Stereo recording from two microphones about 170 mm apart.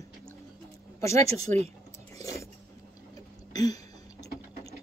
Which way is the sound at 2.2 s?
15° left (ahead or behind).